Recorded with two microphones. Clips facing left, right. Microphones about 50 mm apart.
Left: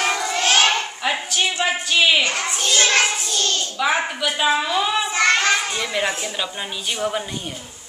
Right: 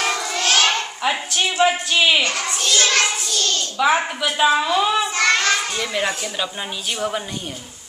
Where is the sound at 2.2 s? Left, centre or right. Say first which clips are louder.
Even; left.